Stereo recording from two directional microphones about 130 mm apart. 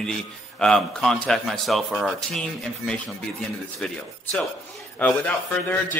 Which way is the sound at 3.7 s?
5° left (ahead or behind).